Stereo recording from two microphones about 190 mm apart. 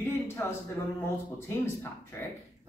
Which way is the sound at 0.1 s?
15° left (ahead or behind).